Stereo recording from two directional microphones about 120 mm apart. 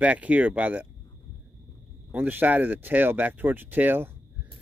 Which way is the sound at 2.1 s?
15° right (ahead or behind).